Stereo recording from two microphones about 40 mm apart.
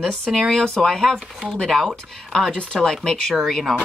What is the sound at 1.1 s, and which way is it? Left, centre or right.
Speech, centre.